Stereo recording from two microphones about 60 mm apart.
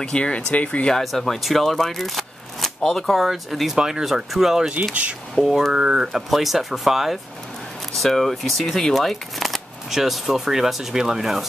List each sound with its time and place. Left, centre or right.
0.0 s speech: centre
0.9 s speech: centre
3.3 s speech: centre